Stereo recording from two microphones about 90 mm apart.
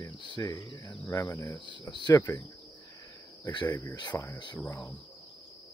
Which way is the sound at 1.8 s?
50° left (ahead or behind).